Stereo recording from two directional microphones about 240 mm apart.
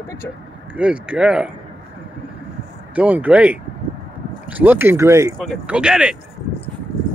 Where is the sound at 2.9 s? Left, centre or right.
Centre.